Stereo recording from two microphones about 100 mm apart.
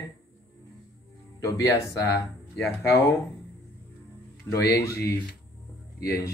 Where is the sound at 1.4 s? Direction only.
30° left (ahead or behind).